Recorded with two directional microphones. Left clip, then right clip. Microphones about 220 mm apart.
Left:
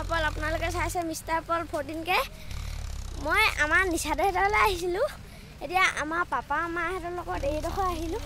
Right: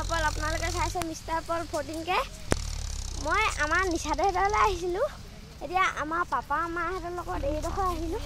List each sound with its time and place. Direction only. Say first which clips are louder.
0.5 s speech: left 1 dB; 15° left (ahead or behind)
3.3 s a child's voice: left 2 dB; 15° left (ahead or behind)